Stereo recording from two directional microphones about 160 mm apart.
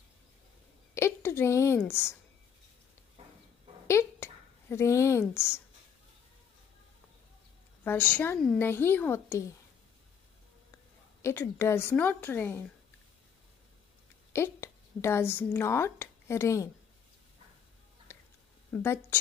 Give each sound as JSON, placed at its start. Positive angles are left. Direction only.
{"t": 0.9, "sound": "a woman's voice", "side_deg": 15}
{"t": 3.8, "sound": "speech", "side_deg": 15}
{"t": 7.8, "sound": "a woman's voice", "side_deg": 15}
{"t": 11.2, "sound": "a woman's voice", "side_deg": 15}
{"t": 14.3, "sound": "a woman's voice", "side_deg": 15}
{"t": 18.1, "sound": "a sound", "side_deg": 15}
{"t": 18.7, "sound": "a woman's voice", "side_deg": 15}